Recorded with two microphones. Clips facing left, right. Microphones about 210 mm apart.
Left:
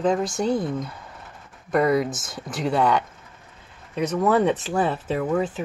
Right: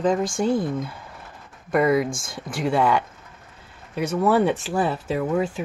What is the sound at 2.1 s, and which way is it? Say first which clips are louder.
Speech: right 1 dB; 20° left (ahead or behind).